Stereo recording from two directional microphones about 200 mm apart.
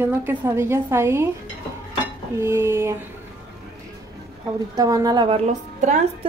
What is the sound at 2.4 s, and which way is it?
Speech, 15° right (ahead or behind).